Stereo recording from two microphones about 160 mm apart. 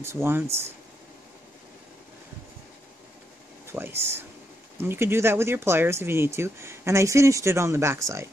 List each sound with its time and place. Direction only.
0.0 s speech: 15° right (ahead or behind)
3.6 s speech: 15° right (ahead or behind)